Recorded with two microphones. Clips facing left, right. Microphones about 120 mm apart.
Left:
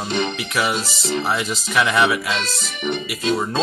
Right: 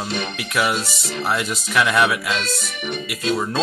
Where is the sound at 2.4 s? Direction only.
25° left (ahead or behind).